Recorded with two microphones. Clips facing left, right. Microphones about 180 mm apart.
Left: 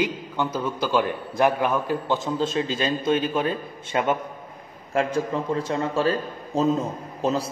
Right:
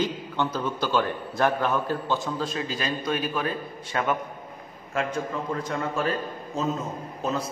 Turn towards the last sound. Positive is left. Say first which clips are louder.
# left 4 dB
turn(degrees=30)  # may be behind; listen again after turning